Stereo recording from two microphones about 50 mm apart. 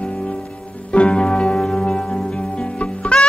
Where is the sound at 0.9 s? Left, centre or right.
Left.